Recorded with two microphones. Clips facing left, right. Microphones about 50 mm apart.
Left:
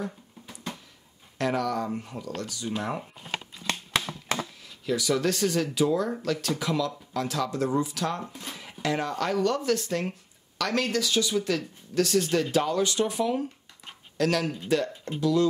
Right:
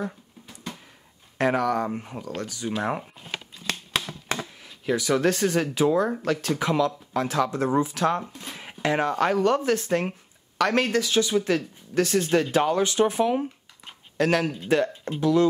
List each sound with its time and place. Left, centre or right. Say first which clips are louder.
1.4 s speech: right 4 dB; right
3.3 s a sound: even; left
4.6 s speech: right 3 dB; right